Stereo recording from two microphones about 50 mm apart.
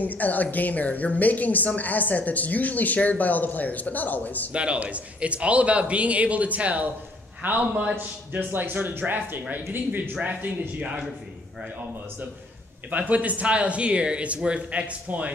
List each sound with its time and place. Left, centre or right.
0.0 s a woman's voice: left
4.5 s speech: right
7.9 s speech: right
10.8 s a man's voice: centre
12.9 s speech: right